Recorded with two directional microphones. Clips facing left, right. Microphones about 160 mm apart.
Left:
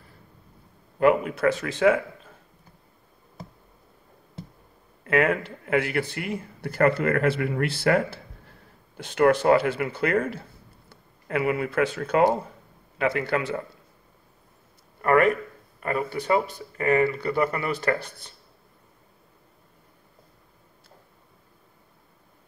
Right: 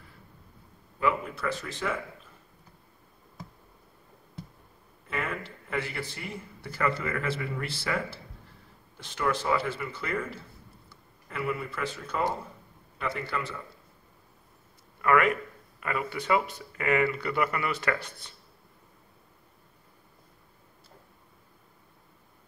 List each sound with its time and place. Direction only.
0.9 s speech: 65° left (ahead or behind); by 2.0 s 80° left
5.0 s speech: 80° left; by 10.4 s 65° left (ahead or behind)
11.2 s speech: 75° left (ahead or behind)
15.0 s a man's voice: 40° left (ahead or behind)